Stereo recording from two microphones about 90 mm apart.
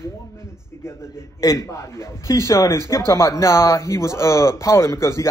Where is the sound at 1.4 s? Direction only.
35° left (ahead or behind).